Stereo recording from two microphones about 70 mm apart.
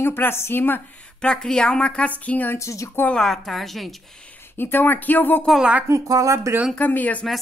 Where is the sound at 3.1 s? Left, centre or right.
Centre.